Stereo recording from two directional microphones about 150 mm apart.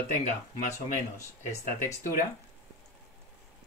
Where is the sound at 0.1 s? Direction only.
55° left (ahead or behind).